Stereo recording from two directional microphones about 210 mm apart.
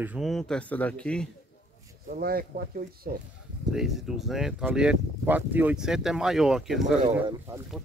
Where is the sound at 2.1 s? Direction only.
45° right (ahead or behind).